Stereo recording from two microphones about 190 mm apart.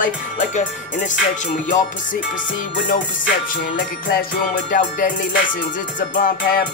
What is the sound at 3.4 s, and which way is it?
Music, 45° left (ahead or behind).